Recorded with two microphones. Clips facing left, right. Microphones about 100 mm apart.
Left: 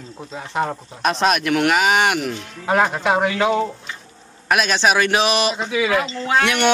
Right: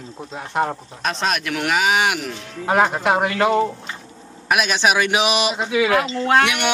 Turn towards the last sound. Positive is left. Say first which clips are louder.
# right 1 dB
turn(degrees=-10)  # may be behind; listen again after turning